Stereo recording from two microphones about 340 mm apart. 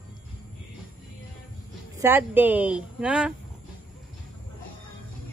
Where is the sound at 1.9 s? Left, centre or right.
Centre.